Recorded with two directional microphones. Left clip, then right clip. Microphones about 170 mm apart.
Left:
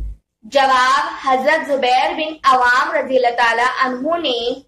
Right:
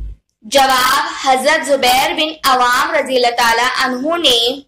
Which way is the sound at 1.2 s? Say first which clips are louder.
Right 3 dB; 35° right (ahead or behind).